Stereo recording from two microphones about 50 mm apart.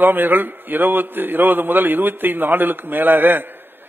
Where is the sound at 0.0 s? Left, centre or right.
Right.